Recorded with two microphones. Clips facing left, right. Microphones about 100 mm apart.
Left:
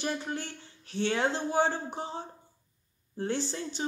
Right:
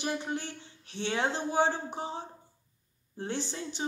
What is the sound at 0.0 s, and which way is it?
Speech, 15° right (ahead or behind).